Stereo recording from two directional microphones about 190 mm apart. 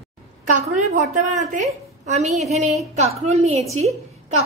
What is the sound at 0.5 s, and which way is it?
A woman's voice, 40° right (ahead or behind).